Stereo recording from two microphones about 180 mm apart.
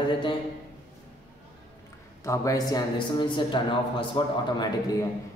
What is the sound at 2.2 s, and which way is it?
A man's voice, 20° left (ahead or behind).